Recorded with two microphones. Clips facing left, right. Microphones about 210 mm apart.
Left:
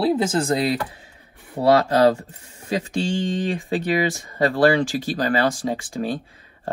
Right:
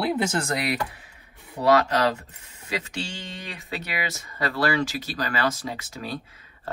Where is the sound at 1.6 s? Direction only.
50° left (ahead or behind).